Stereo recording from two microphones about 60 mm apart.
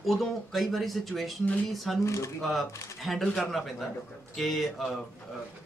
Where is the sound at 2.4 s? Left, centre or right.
Centre.